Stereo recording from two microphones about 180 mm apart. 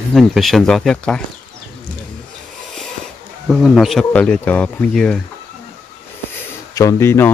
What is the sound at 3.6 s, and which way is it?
Speech, centre (ahead or behind).